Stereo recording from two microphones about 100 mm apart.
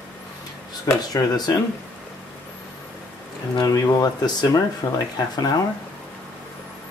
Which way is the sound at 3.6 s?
35° left (ahead or behind).